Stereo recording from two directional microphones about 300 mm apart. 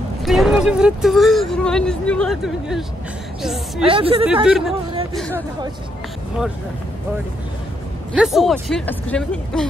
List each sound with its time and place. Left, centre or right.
0.2 s speech: centre
3.8 s a woman's voice: centre
4.5 s speech: centre
8.1 s speech: centre